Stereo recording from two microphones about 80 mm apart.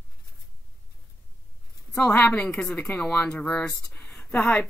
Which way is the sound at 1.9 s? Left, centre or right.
Centre.